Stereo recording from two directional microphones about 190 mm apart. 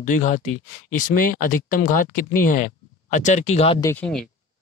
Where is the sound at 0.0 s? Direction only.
40° left (ahead or behind).